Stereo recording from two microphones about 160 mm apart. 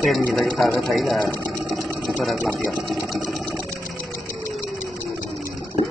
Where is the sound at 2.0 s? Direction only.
Centre (ahead or behind).